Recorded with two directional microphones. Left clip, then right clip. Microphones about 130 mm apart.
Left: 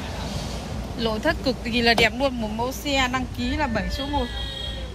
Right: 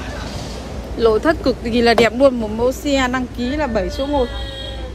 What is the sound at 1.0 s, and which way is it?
Speech, 75° right (ahead or behind).